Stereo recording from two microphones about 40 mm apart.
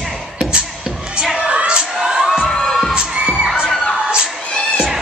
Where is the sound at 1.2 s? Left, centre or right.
Centre.